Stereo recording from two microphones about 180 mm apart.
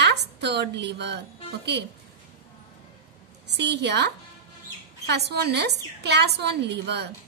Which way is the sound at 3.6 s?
70° right (ahead or behind).